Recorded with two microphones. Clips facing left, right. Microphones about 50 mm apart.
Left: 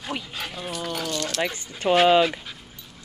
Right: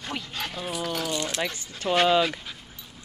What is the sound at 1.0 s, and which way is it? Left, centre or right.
Speech, centre.